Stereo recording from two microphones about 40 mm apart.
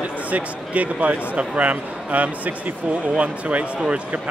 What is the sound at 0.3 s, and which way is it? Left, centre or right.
Speech, right.